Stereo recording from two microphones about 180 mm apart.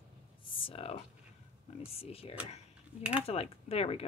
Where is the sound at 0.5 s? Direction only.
30° left (ahead or behind).